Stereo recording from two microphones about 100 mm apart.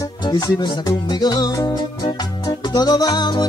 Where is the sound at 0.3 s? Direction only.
40° left (ahead or behind).